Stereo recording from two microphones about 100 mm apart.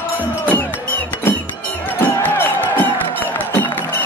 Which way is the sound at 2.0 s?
20° left (ahead or behind).